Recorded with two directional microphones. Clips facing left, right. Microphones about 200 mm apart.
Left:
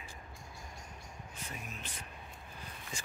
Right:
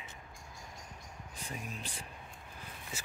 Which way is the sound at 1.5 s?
35° right (ahead or behind).